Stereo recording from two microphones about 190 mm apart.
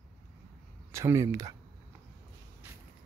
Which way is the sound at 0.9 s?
15° right (ahead or behind).